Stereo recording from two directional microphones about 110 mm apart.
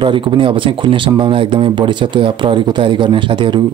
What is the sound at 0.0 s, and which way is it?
Speech, 50° right (ahead or behind).